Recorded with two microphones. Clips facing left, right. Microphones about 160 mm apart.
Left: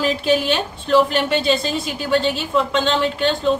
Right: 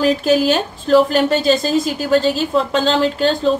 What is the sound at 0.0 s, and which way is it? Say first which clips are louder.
A woman's voice: right 4 dB; 40° right (ahead or behind).